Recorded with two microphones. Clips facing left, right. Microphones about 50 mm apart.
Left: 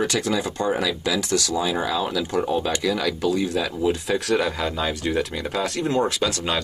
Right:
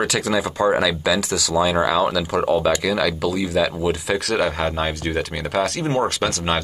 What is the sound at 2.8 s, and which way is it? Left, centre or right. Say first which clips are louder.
Speech: right 2 dB; right.